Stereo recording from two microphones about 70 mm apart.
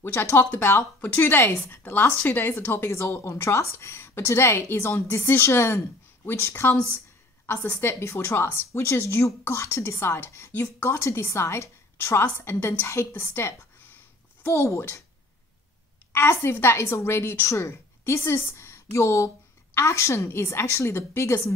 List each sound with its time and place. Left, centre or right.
0.1 s a woman's voice: left
7.7 s a woman's voice: left
12.5 s a woman's voice: left
12.8 s a woman's voice: left
13.1 s a sound: left
16.1 s a woman's voice: left